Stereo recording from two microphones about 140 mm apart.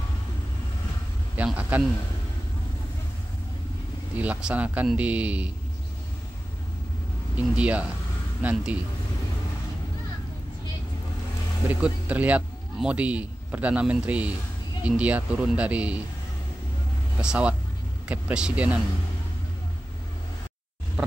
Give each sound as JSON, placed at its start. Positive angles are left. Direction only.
{"t": 1.3, "sound": "speech", "side_deg": -10}
{"t": 4.2, "sound": "speech", "side_deg": -10}
{"t": 7.3, "sound": "speech", "side_deg": -10}
{"t": 11.8, "sound": "a man's voice", "side_deg": -10}
{"t": 17.2, "sound": "speech", "side_deg": -5}